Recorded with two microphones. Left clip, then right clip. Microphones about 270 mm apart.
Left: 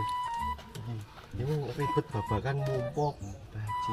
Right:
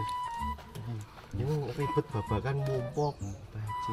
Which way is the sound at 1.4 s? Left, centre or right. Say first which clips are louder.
Left 1 dB; centre.